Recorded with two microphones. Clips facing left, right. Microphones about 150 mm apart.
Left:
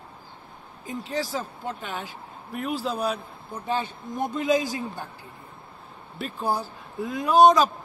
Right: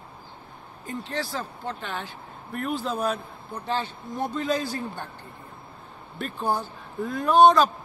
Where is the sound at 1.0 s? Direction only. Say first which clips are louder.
Left 3 dB; 10° left (ahead or behind).